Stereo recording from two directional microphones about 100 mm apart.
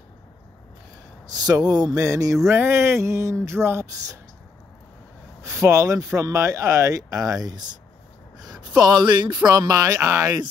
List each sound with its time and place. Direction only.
1.3 s speech: 40° right (ahead or behind); by 4.2 s 25° right (ahead or behind)
5.4 s speech: 30° right (ahead or behind); by 9.4 s 50° right (ahead or behind)
9.5 s speech: 35° right (ahead or behind)